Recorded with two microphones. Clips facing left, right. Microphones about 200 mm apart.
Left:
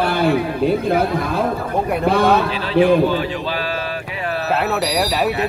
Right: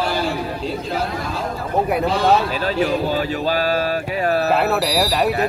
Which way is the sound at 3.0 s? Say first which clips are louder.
Left 1 dB; 40° right (ahead or behind).